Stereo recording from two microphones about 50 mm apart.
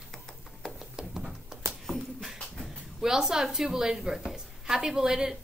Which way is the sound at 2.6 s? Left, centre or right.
Centre.